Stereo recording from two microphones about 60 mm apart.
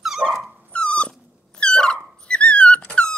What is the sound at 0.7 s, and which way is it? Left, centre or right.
Dog, centre.